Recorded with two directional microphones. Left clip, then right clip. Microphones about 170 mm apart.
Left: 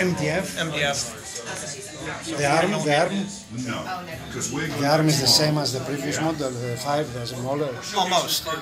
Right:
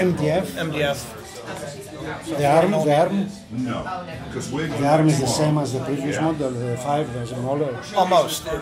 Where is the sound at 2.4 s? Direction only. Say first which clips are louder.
Right 4 dB; 15° right (ahead or behind).